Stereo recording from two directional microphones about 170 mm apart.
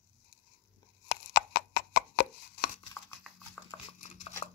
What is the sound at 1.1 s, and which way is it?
Chopping, 85° left.